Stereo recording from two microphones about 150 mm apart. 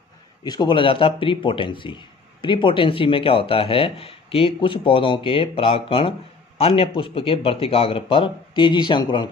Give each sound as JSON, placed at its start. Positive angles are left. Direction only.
{"t": 0.4, "sound": "speech", "side_deg": 30}